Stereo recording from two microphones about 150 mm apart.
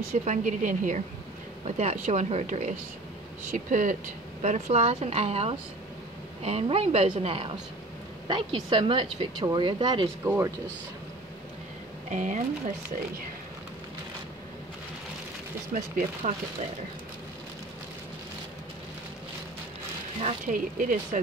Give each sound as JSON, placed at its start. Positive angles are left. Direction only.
{"t": 0.1, "sound": "a woman's voice", "side_deg": -50}
{"t": 1.6, "sound": "a woman's voice", "side_deg": -45}
{"t": 4.4, "sound": "a woman's voice", "side_deg": -50}
{"t": 10.2, "sound": "speech", "side_deg": -20}
{"t": 12.1, "sound": "a woman's voice", "side_deg": -55}
{"t": 15.7, "sound": "a woman's voice", "side_deg": -60}
{"t": 20.2, "sound": "a woman's voice", "side_deg": -45}
{"t": 20.5, "sound": "a woman's voice", "side_deg": -65}